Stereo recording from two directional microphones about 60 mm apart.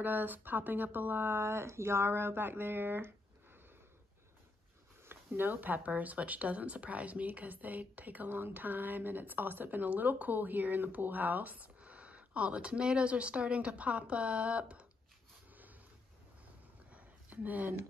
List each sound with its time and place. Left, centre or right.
0.0 s speech: right
5.0 s speech: right
16.9 s a sound: right